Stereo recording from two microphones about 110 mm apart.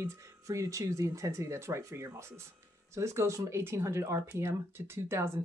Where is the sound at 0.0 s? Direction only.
25° right (ahead or behind).